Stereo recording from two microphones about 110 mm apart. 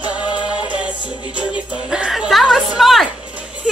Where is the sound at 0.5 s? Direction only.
10° right (ahead or behind).